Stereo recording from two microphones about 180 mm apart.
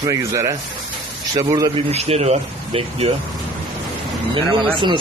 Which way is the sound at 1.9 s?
35° right (ahead or behind).